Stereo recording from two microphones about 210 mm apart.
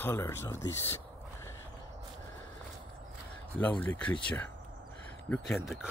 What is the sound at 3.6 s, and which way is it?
Speech, 5° left (ahead or behind).